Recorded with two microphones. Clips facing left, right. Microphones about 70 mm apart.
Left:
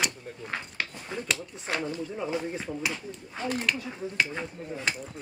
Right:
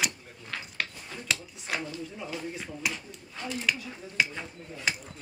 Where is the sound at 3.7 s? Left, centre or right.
Centre.